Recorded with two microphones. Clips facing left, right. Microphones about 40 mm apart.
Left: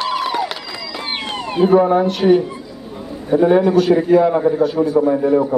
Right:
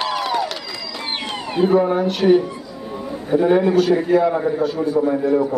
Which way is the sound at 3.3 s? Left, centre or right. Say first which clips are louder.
Left 3 dB; centre.